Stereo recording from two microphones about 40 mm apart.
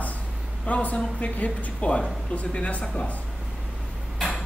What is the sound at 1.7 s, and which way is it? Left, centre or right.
A woman's voice, left.